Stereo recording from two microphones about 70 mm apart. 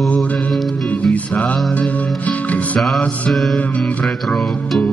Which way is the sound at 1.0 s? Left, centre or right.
Centre.